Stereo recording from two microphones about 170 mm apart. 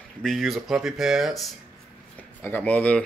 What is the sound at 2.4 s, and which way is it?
Speech, 10° left (ahead or behind).